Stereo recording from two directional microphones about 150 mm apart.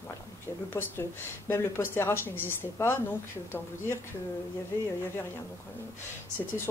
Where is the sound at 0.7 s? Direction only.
15° left (ahead or behind).